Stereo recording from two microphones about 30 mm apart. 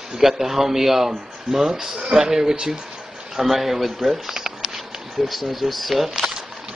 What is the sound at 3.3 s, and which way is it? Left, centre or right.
Speech, centre.